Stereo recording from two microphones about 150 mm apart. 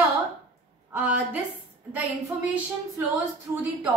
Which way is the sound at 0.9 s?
10° right (ahead or behind).